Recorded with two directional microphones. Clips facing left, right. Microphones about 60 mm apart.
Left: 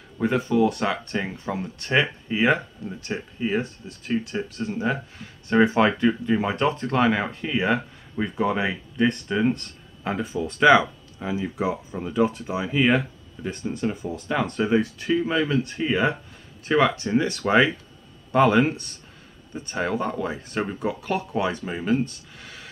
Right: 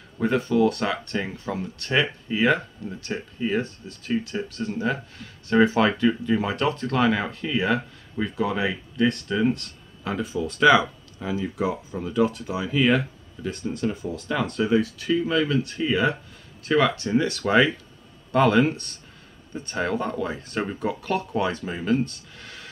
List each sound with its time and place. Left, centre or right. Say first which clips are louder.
0.2 s speech: even; centre; by 10.9 s left
11.1 s speech: even; centre